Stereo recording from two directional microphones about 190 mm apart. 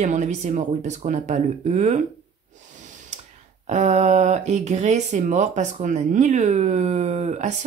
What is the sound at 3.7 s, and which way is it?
Speech, 40° right (ahead or behind).